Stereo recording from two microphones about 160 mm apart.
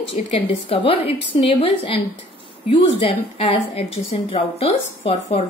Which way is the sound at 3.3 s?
35° left (ahead or behind).